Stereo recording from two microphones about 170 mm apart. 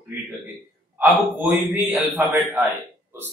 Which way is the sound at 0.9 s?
10° right (ahead or behind).